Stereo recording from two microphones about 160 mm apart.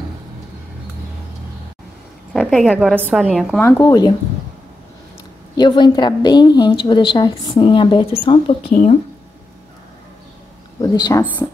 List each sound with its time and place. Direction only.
2.3 s a woman's voice: centre (ahead or behind)
3.6 s a woman's voice: 25° left (ahead or behind)
5.6 s a woman's voice: 30° left (ahead or behind)
10.8 s a woman's voice: 25° left (ahead or behind)